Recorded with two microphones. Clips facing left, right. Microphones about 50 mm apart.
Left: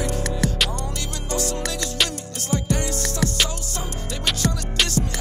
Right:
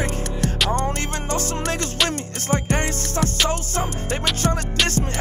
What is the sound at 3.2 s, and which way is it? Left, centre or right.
Music, right.